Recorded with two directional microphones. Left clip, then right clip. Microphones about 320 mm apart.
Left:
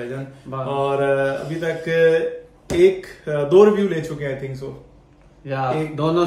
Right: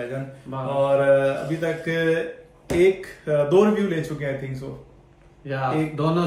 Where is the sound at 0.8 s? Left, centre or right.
Centre.